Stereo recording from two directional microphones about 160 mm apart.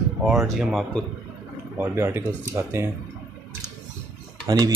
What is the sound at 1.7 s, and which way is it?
Speech, 15° right (ahead or behind).